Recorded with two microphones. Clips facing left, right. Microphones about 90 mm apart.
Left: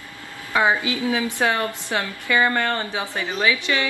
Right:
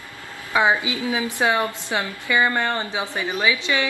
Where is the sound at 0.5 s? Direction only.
20° right (ahead or behind).